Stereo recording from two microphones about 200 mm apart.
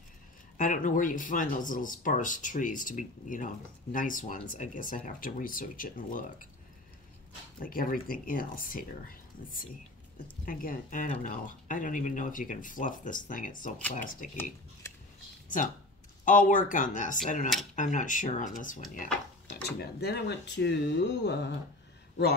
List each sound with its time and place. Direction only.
0.6 s speech: 40° left (ahead or behind)
7.6 s speech: 45° left (ahead or behind)
10.4 s speech: 45° left (ahead or behind)
16.3 s speech: 40° left (ahead or behind)
19.5 s speech: 55° left (ahead or behind)